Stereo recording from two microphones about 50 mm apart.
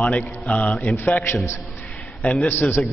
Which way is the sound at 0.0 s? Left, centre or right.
Left.